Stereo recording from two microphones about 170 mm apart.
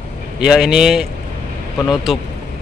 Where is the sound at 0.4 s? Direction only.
5° right (ahead or behind).